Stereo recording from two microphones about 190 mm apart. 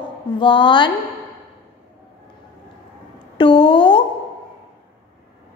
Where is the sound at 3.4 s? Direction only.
25° left (ahead or behind).